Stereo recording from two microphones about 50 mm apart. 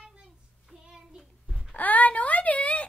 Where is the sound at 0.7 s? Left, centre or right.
Centre.